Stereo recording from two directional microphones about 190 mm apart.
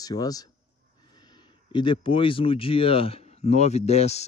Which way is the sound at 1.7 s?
25° left (ahead or behind).